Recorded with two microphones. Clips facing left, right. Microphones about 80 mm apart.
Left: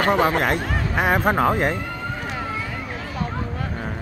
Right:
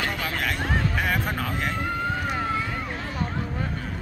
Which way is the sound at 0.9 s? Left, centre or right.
Left.